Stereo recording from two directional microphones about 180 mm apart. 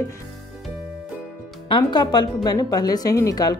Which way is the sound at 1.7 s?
25° left (ahead or behind).